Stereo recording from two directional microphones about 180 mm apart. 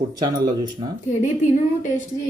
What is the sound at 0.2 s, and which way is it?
Speech, 25° right (ahead or behind).